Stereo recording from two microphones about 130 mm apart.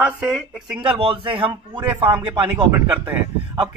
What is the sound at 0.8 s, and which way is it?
A man's voice, 40° right (ahead or behind).